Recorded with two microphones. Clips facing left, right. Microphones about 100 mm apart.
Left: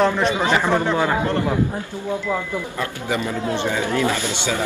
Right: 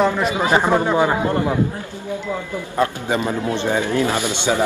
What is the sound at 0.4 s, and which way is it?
A man's voice, 20° right (ahead or behind).